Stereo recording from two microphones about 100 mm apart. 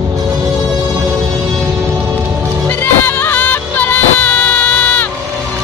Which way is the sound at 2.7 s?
20° left (ahead or behind).